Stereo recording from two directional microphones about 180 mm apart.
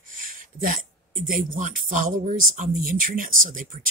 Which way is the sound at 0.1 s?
50° right (ahead or behind).